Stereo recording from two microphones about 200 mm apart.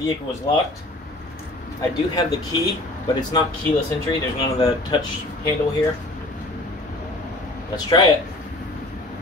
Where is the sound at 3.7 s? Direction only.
35° left (ahead or behind).